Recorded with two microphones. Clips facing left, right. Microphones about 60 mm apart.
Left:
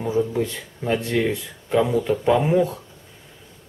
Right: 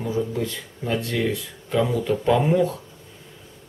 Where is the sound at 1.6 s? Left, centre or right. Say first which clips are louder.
Left 2 dB; centre.